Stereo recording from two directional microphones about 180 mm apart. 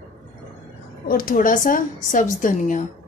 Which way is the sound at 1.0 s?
50° left (ahead or behind).